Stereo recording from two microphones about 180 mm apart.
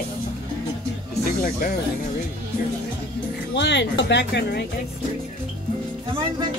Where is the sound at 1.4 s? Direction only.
50° left (ahead or behind).